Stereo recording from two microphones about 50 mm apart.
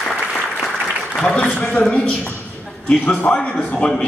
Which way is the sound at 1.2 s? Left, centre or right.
Left.